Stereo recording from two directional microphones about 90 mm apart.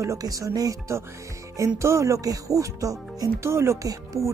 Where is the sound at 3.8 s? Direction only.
40° right (ahead or behind).